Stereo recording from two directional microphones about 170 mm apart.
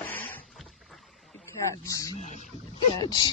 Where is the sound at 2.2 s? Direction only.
45° left (ahead or behind).